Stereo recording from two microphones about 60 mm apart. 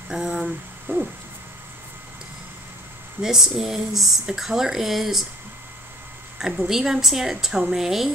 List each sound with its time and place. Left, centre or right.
0.1 s a woman's voice: centre
0.9 s a sound: right
3.2 s speech: centre
6.6 s a woman's voice: centre